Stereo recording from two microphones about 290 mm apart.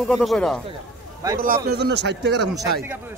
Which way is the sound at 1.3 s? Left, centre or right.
Right.